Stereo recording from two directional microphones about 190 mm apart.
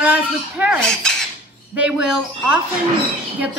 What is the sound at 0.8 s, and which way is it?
Cutlery, 5° left (ahead or behind).